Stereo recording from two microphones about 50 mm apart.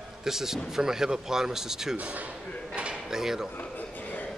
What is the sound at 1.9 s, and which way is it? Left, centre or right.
Speech, right.